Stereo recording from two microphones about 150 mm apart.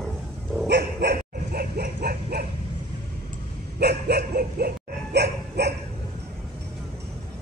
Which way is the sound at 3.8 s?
90° right.